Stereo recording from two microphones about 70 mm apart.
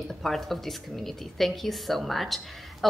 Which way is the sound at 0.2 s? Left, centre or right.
Centre.